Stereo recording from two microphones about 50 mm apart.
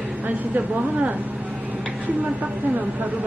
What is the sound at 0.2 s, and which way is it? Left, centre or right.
Speech, right.